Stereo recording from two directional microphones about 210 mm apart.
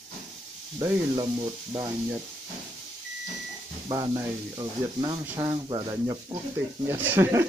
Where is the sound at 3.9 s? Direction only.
15° right (ahead or behind).